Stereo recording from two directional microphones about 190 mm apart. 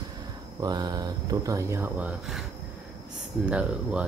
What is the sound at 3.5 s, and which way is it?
Speech, 5° right (ahead or behind).